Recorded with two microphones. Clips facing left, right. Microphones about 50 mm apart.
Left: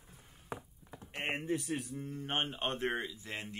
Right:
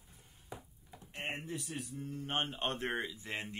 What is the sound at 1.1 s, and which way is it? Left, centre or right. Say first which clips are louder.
Speech: left 5 dB; left.